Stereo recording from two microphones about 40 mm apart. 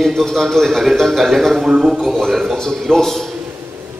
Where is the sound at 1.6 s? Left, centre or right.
Right.